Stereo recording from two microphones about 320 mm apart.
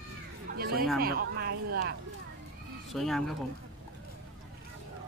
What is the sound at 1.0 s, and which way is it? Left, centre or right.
Speech, right.